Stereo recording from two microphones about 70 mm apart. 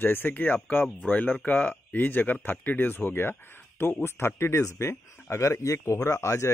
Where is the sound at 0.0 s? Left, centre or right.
Left.